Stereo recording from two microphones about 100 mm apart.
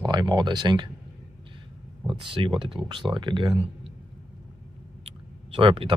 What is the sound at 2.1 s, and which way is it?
Speech, 60° right (ahead or behind).